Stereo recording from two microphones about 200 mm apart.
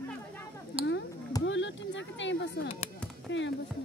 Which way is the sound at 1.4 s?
65° left (ahead or behind).